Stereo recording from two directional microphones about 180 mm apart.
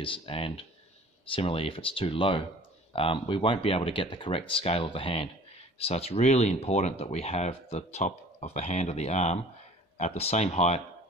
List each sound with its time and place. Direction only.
0.0 s speech: 30° left (ahead or behind)